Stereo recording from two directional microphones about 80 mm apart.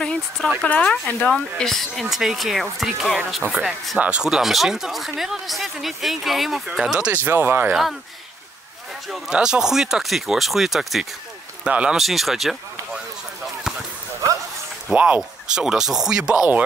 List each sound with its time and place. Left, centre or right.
0.0 s a sound: centre
0.7 s speech: centre
3.4 s speech: centre
7.2 s speech: right
9.1 s speech: centre
11.6 s speech: centre
12.0 s speech: centre
14.9 s speech: centre